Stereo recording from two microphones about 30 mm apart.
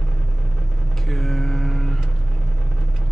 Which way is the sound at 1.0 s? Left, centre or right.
Centre.